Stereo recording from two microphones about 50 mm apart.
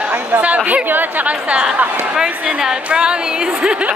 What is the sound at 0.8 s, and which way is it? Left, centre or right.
A woman's voice, right.